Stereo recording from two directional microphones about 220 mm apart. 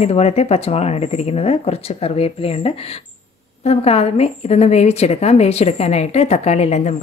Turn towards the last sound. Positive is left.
turn(degrees=30)  # may be behind; listen again after turning